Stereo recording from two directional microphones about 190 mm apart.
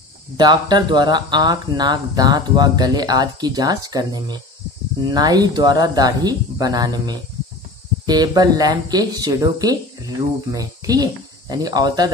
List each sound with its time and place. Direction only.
0.4 s speech: 20° right (ahead or behind)